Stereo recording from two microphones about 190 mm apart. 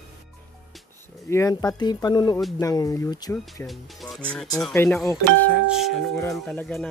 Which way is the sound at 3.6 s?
Centre (ahead or behind).